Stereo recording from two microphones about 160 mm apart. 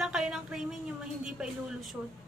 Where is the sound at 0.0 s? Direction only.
5° right (ahead or behind).